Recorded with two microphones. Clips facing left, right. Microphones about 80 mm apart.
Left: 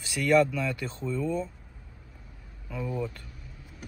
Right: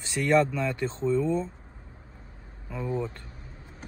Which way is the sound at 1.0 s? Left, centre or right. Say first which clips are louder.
Right 5 dB; right.